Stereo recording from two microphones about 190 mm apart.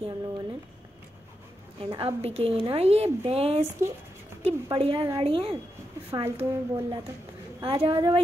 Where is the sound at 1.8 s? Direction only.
30° right (ahead or behind).